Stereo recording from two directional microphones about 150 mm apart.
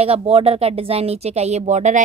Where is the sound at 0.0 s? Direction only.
40° right (ahead or behind).